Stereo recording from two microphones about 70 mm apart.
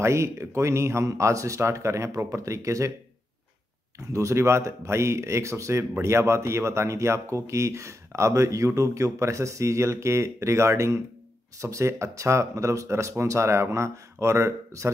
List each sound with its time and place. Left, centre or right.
0.0 s speech: right
4.0 s speech: right